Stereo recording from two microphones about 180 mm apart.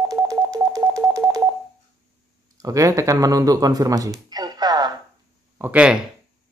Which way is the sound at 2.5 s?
20° right (ahead or behind).